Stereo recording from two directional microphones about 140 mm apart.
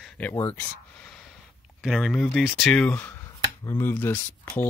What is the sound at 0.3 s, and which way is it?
Speech, 15° left (ahead or behind).